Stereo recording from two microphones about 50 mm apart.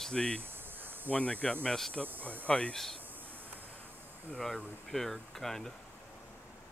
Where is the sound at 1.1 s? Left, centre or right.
Left.